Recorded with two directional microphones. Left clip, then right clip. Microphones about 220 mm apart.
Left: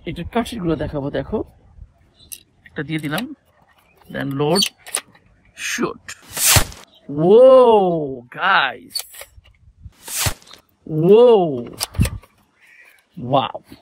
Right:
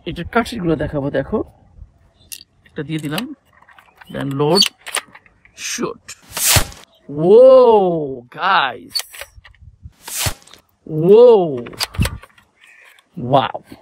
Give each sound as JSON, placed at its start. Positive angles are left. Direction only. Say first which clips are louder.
{"t": 0.0, "sound": "speech", "louder": "right 4 dB", "side_deg": -25}
{"t": 2.6, "sound": "speech", "louder": "even", "side_deg": -20}
{"t": 4.6, "sound": "keys jangling", "louder": "right 5 dB", "side_deg": 0}
{"t": 5.5, "sound": "speech", "louder": "left 1 dB", "side_deg": -15}
{"t": 6.3, "sound": "a sound", "louder": "even", "side_deg": 0}
{"t": 7.2, "sound": "speech", "louder": "right 2 dB", "side_deg": -15}
{"t": 8.9, "sound": "a sound", "louder": "right 5 dB", "side_deg": 0}
{"t": 10.9, "sound": "speech", "louder": "right 2 dB", "side_deg": -15}
{"t": 11.5, "sound": "a sound", "louder": "right 3 dB", "side_deg": 0}
{"t": 13.2, "sound": "speech", "louder": "right 3 dB", "side_deg": -40}